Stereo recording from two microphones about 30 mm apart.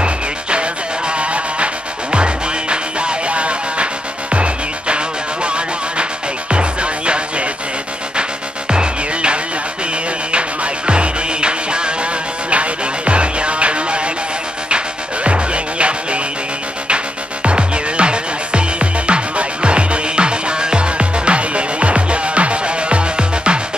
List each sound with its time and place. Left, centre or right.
0.0 s music: right
15.2 s music: right